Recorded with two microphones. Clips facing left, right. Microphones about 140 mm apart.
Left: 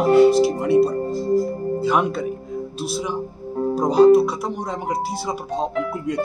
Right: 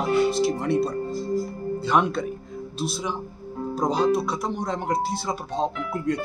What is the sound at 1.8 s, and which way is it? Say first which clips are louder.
Speech: left 1 dB; 5° left (ahead or behind).